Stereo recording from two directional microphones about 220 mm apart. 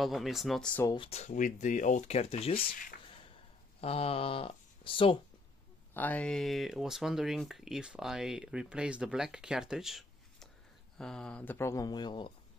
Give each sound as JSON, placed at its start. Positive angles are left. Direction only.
{"t": 0.0, "sound": "speech", "side_deg": 0}
{"t": 0.9, "sound": "speech", "side_deg": 25}
{"t": 5.9, "sound": "speech", "side_deg": 5}